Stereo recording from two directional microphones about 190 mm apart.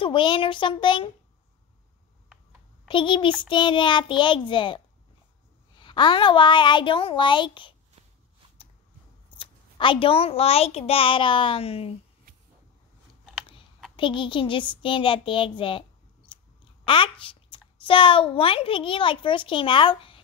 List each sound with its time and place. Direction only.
0.0 s a child's voice: 25° left (ahead or behind)
2.9 s a child's voice: 25° left (ahead or behind)
9.4 s a child's voice: 25° left (ahead or behind)
13.9 s a child's voice: 25° left (ahead or behind)